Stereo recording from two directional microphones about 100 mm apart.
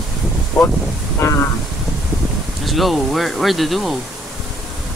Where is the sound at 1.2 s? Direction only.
30° left (ahead or behind).